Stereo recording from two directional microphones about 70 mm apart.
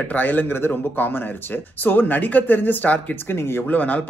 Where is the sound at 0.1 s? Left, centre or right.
Left.